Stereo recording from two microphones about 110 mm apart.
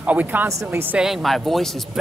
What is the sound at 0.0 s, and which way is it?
Speech, 15° right (ahead or behind).